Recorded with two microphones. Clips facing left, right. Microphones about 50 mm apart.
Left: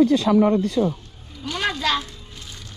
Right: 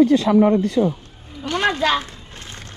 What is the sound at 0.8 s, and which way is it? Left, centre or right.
A child's voice, right.